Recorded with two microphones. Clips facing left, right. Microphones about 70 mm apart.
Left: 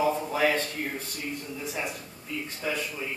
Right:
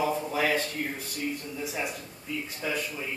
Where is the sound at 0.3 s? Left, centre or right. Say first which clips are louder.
Left 2 dB; centre.